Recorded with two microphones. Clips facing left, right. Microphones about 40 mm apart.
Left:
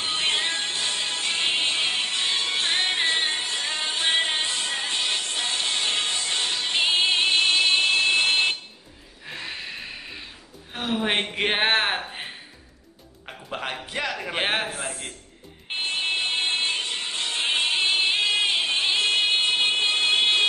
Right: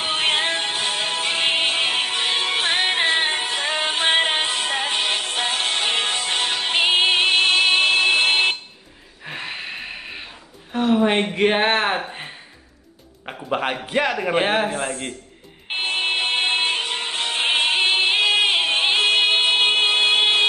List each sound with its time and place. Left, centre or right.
0.0 s music: right
9.2 s gasp: right
11.1 s speech: centre
13.3 s a man's voice: right
14.3 s speech: centre
14.7 s a man's voice: right
15.7 s music: right